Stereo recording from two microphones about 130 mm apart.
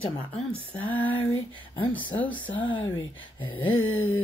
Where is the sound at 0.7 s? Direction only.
15° left (ahead or behind).